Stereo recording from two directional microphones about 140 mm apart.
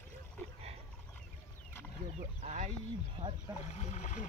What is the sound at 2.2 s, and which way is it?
Speech, 55° right (ahead or behind).